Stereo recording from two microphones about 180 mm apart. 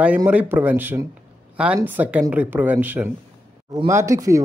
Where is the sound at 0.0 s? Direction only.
10° right (ahead or behind).